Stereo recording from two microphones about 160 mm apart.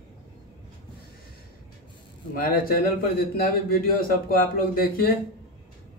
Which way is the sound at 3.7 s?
65° left (ahead or behind).